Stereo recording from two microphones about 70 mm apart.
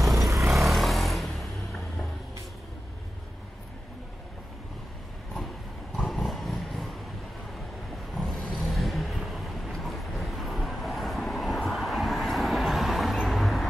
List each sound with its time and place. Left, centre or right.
0.0 s vehicle: centre
0.3 s vehicle: right
0.6 s vehicle: centre
6.0 s vehicle: centre
8.1 s vehicle: centre